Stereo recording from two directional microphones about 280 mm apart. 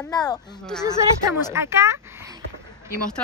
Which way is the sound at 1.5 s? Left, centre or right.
Centre.